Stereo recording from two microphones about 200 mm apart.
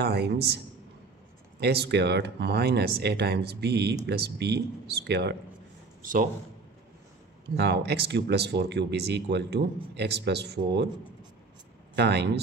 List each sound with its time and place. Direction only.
0.0 s speech: 55° right (ahead or behind)
1.6 s speech: 55° right (ahead or behind)
7.5 s speech: 55° right (ahead or behind)
11.9 s speech: 60° right (ahead or behind)